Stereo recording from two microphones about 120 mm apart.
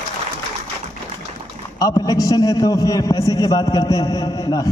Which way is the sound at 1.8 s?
30° left (ahead or behind).